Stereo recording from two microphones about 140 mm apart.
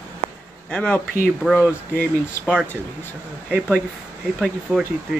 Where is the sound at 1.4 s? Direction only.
5° right (ahead or behind).